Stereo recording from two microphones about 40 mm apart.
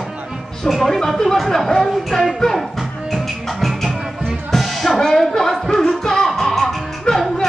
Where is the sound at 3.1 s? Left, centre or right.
Centre.